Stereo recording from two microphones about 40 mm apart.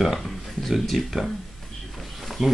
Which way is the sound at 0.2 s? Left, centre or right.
Centre.